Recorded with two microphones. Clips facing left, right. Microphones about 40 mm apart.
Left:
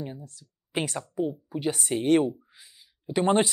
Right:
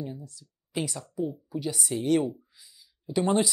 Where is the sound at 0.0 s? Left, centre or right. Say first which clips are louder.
Even; left.